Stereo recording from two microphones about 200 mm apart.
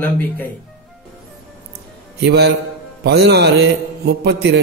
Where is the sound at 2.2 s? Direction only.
55° right (ahead or behind).